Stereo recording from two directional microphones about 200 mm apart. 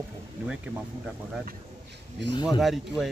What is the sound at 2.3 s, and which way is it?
Speech, 20° left (ahead or behind).